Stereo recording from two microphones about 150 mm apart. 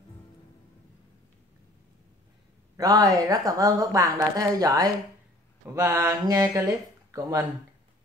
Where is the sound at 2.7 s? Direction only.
25° right (ahead or behind).